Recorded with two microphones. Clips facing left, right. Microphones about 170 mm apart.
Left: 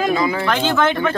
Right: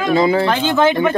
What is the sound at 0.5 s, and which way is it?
Speech, 15° right (ahead or behind).